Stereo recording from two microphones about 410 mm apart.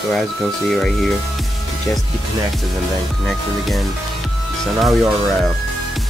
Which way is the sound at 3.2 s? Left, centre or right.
Centre.